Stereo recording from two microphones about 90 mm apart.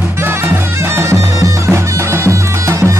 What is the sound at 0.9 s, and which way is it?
Bagpipes, 30° right (ahead or behind).